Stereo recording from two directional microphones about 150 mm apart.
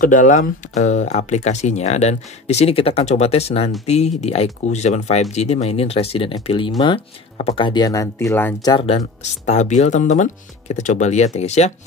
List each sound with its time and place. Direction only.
0.0 s speech: 60° left (ahead or behind); by 8.5 s 15° left (ahead or behind)
8.6 s speech: 35° left (ahead or behind)
9.2 s speech: 50° left (ahead or behind)